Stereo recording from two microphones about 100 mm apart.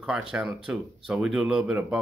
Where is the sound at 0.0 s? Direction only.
10° right (ahead or behind).